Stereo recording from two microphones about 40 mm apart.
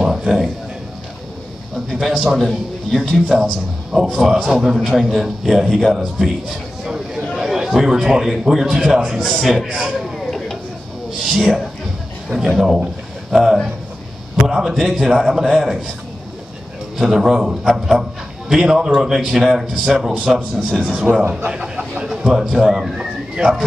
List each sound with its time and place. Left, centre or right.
0.0 s a sound: centre
1.9 s a man's voice: centre
11.1 s a man's voice: centre
17.0 s a man's voice: centre
21.1 s a man's voice: right
21.5 s a man's voice: right